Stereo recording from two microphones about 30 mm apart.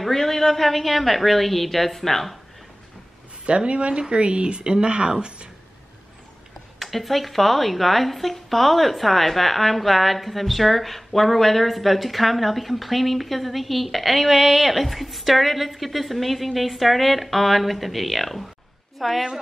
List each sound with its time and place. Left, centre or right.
0.1 s speech: centre
3.4 s speech: right
6.8 s speech: centre